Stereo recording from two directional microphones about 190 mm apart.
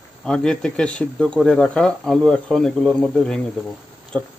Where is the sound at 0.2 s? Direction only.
5° left (ahead or behind).